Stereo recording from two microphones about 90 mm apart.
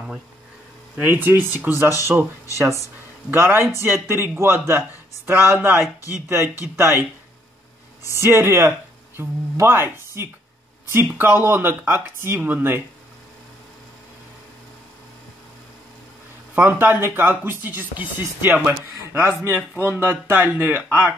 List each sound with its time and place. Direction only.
1.0 s speech: 20° right (ahead or behind)
2.5 s speech: 30° right (ahead or behind)
8.2 s speech: 25° right (ahead or behind)
16.5 s speech: 20° right (ahead or behind)